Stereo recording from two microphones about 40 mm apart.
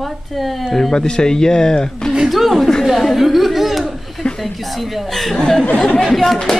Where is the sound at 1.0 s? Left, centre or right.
Centre.